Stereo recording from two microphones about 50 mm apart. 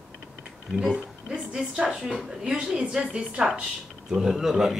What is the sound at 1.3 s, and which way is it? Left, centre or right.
Speech, centre.